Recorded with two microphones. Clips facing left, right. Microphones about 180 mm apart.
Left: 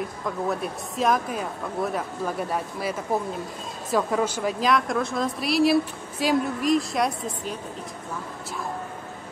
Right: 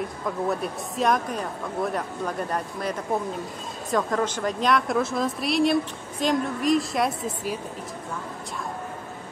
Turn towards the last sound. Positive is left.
turn(degrees=-5)  # may be behind; listen again after turning